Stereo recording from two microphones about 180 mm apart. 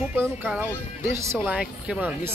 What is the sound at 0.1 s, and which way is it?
Speech, 10° right (ahead or behind).